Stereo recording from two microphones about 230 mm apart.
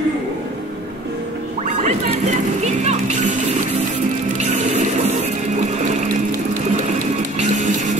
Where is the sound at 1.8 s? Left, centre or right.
Right.